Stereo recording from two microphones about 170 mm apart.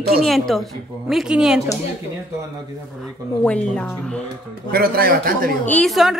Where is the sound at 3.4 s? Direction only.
5° left (ahead or behind).